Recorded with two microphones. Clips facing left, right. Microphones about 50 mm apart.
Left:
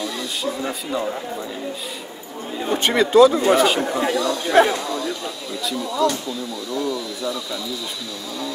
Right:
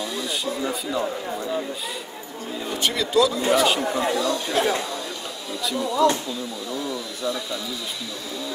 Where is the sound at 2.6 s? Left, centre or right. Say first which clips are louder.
Left 7 dB; left.